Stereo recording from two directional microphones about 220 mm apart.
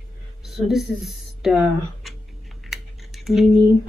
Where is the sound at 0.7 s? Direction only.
Centre (ahead or behind).